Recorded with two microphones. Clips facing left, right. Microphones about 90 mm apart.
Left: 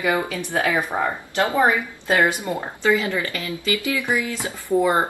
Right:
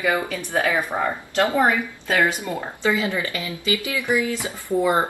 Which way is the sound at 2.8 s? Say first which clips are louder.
Left 2 dB; 20° right (ahead or behind).